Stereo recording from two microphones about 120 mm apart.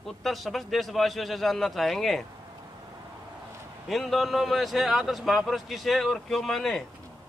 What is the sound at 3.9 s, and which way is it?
A man's voice, centre (ahead or behind).